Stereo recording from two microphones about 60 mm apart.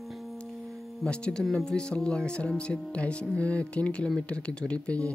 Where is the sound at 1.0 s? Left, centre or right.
Centre.